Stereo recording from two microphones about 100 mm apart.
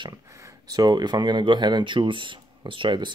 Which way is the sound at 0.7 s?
45° right (ahead or behind).